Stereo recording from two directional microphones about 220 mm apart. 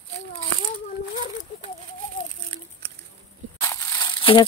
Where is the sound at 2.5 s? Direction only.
25° right (ahead or behind).